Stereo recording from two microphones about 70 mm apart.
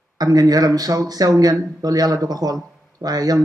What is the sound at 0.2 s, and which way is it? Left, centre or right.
Speech, right.